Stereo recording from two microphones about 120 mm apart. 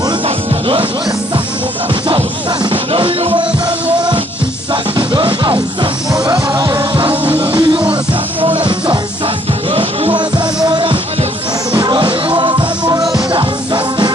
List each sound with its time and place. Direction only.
2.0 s music: 45° right (ahead or behind)
4.9 s music: 40° right (ahead or behind)
7.3 s music: 45° right (ahead or behind)
9.7 s music: 50° right (ahead or behind)
12.9 s music: 30° right (ahead or behind)